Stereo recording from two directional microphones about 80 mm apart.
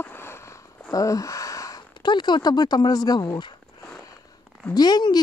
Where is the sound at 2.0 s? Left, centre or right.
Left.